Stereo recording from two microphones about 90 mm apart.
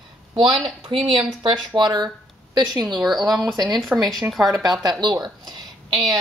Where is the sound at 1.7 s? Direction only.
55° right (ahead or behind).